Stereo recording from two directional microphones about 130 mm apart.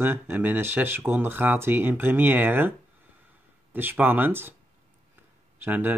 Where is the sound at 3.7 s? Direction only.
15° right (ahead or behind).